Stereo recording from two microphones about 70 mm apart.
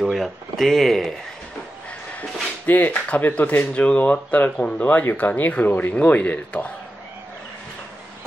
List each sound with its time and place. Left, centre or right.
0.0 s speech: centre
2.6 s speech: left